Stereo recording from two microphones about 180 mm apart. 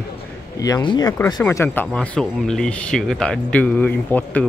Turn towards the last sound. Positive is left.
turn(degrees=10)  # may be behind; listen again after turning